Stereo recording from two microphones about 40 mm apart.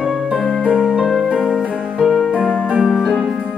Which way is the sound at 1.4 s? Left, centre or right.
Centre.